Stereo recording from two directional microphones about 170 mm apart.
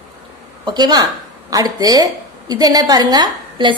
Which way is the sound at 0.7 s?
25° right (ahead or behind).